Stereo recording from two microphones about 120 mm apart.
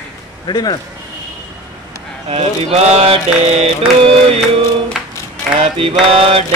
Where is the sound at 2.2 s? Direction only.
60° right (ahead or behind).